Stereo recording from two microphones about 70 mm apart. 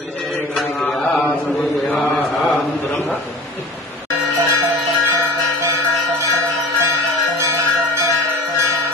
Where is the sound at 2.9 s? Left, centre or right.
Left.